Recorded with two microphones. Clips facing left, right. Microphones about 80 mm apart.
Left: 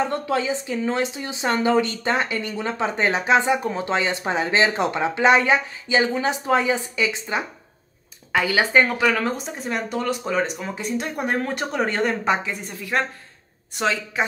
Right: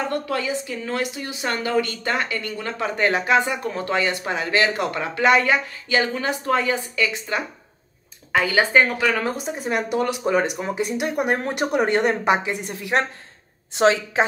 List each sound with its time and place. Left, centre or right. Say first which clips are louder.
0.1 s speech: left 1 dB; left
8.3 s speech: right 1 dB; centre
9.0 s a woman's voice: left 1 dB; centre